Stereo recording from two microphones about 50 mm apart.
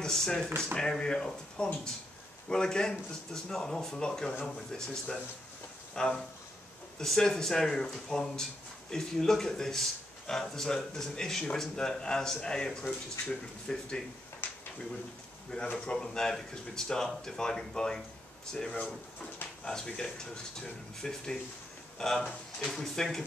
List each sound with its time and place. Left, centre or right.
0.0 s speech: centre
14.4 s a sound: left
15.8 s speech: centre